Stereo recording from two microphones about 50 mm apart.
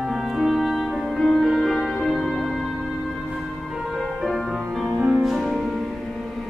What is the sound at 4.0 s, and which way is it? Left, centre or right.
Music, centre.